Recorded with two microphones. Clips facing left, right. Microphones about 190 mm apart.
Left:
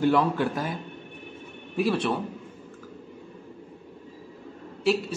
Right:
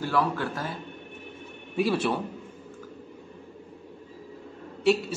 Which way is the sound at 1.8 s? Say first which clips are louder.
Even; centre (ahead or behind).